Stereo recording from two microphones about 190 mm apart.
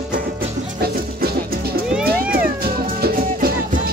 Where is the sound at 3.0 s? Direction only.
55° right (ahead or behind).